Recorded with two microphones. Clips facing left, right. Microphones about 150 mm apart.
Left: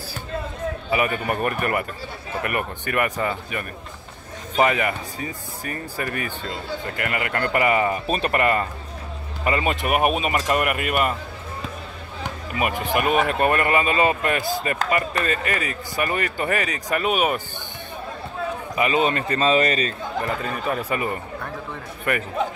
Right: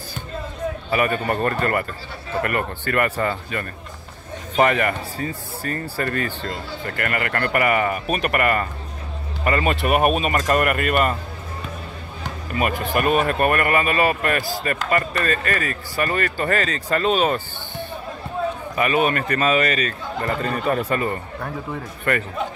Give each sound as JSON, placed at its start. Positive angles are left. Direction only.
{"t": 0.8, "sound": "speech", "side_deg": 15}
{"t": 12.5, "sound": "speech", "side_deg": 15}
{"t": 18.8, "sound": "speech", "side_deg": 20}
{"t": 20.2, "sound": "speech", "side_deg": 5}
{"t": 20.9, "sound": "speech", "side_deg": 15}